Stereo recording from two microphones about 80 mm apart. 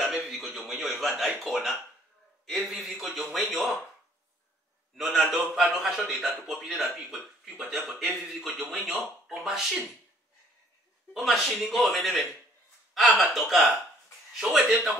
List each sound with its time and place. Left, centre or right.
0.0 s music: centre
2.4 s a man's voice: centre
4.9 s a man's voice: centre
11.1 s a man's voice: centre